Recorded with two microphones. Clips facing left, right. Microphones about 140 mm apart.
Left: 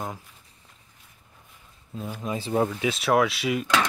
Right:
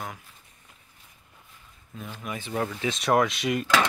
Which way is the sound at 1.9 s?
25° left (ahead or behind).